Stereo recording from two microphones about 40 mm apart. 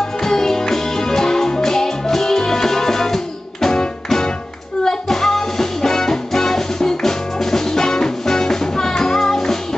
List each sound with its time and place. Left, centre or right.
0.2 s music: centre